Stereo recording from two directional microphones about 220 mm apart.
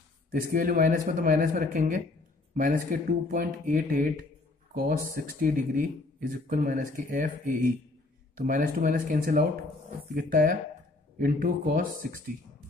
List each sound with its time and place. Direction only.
0.3 s speech: 40° right (ahead or behind)